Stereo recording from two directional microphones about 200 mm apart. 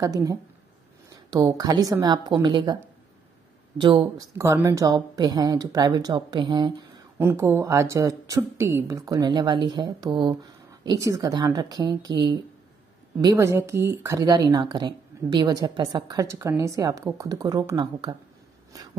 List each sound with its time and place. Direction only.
0.0 s a woman's voice: 15° right (ahead or behind)
3.8 s a woman's voice: 20° right (ahead or behind)